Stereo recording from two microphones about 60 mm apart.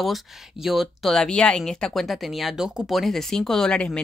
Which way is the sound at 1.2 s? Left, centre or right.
Centre.